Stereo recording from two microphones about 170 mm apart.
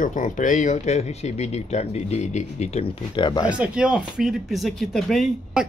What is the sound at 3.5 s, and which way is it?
Speech, 5° right (ahead or behind).